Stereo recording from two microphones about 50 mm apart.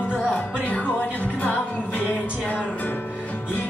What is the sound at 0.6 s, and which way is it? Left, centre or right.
Music, left.